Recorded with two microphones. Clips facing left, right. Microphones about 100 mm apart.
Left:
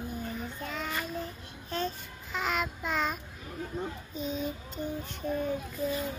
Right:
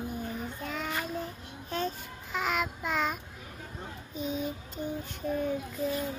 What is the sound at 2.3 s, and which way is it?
Child singing, 10° right (ahead or behind).